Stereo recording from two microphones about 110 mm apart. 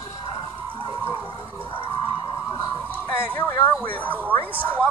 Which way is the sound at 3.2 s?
20° left (ahead or behind).